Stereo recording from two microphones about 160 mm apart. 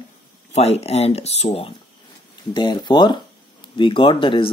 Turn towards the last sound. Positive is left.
turn(degrees=30)  # may be behind; listen again after turning